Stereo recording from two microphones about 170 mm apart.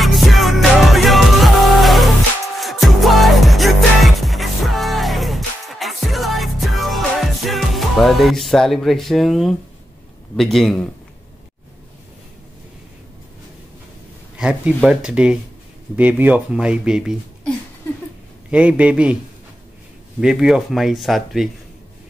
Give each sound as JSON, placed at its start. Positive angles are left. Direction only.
{"t": 0.0, "sound": "music", "side_deg": 0}
{"t": 10.3, "sound": "speech", "side_deg": 0}
{"t": 14.3, "sound": "speech", "side_deg": -5}
{"t": 18.5, "sound": "speech", "side_deg": -10}
{"t": 20.2, "sound": "speech", "side_deg": -5}